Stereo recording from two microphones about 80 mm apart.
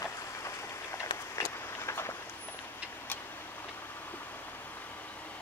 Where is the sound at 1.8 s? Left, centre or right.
Left.